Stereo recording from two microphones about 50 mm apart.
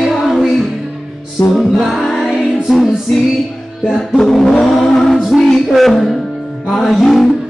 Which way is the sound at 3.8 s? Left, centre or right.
Centre.